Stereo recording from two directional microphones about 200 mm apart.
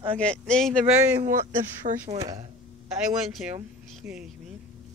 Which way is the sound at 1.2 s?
40° right (ahead or behind).